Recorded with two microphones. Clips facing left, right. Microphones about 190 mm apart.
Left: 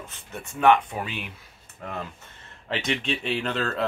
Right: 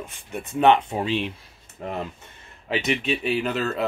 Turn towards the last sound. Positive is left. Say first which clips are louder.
# right 3 dB
turn(degrees=-5)  # may be behind; listen again after turning